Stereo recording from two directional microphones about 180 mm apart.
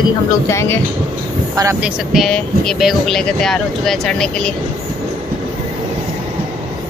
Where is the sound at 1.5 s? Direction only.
15° right (ahead or behind).